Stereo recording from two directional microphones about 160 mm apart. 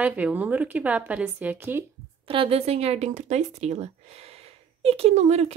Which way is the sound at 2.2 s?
35° right (ahead or behind).